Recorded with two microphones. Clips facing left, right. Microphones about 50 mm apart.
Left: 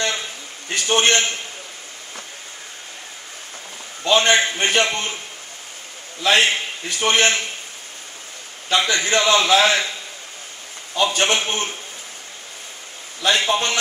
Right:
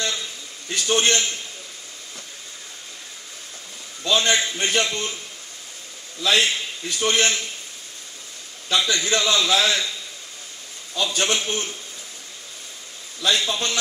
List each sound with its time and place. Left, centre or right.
0.0 s a sound: left
4.0 s a man's voice: left
6.2 s a man's voice: left
8.6 s a man's voice: left
11.0 s a man's voice: left
13.2 s a man's voice: left